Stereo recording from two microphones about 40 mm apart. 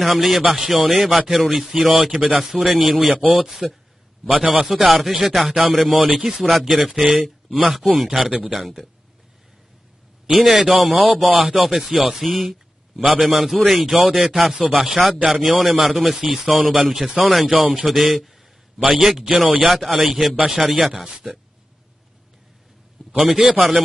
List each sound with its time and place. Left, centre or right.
0.0 s a man's voice: centre
4.4 s a man's voice: right
4.6 s a man's voice: centre
8.3 s a man's voice: centre
8.5 s a man's voice: centre
10.3 s a man's voice: centre